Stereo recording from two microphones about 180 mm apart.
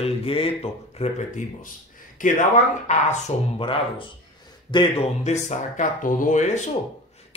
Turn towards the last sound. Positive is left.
turn(degrees=40)  # may be behind; listen again after turning